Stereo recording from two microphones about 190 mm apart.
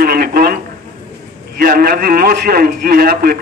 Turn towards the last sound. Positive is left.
turn(degrees=-50)  # may be behind; listen again after turning